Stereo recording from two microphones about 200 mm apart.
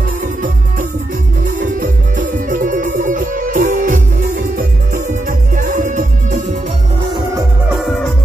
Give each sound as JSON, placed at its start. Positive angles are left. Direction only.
{"t": 1.6, "sound": "music", "side_deg": -40}
{"t": 5.6, "sound": "music", "side_deg": -40}